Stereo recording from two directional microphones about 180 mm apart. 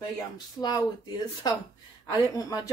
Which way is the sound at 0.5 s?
20° left (ahead or behind).